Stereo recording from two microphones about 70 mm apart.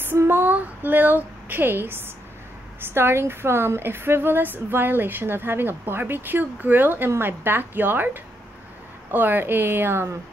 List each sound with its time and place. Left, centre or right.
0.0 s a woman's voice: right